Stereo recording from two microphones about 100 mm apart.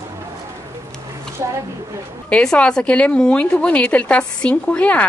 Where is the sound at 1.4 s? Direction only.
30° right (ahead or behind).